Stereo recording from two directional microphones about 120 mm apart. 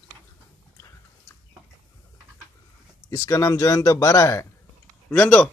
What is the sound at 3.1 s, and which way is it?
A man's voice, 25° left (ahead or behind).